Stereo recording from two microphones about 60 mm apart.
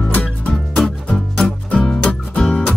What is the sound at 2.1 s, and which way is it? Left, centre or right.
Music, centre.